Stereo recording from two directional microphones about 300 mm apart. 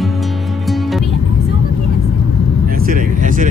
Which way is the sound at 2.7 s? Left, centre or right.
Right.